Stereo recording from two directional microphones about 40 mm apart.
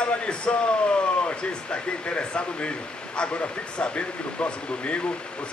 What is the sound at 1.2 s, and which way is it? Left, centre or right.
Speech, left.